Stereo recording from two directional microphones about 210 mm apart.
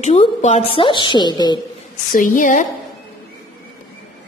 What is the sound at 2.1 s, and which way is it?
Speech, 40° left (ahead or behind).